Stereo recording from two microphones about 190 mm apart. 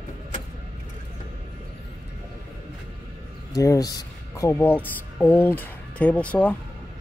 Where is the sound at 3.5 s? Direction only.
15° left (ahead or behind).